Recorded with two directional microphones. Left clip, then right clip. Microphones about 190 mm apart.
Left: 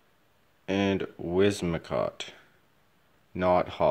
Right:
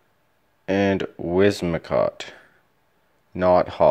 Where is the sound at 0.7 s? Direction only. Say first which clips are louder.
Right 7 dB; 15° right (ahead or behind).